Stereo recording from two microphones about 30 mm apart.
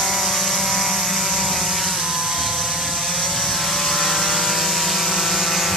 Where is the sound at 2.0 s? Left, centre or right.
Centre.